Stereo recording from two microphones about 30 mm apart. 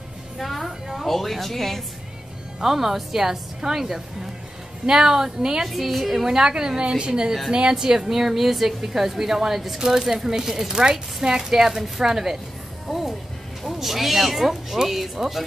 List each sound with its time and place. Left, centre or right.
0.4 s music: centre
0.8 s a woman's voice: centre
2.6 s a woman's voice: centre
5.7 s speech: centre
6.2 s a woman's voice: right
8.1 s a woman's voice: centre
10.0 s a woman's voice: centre
12.8 s music: centre
13.7 s a woman's voice: centre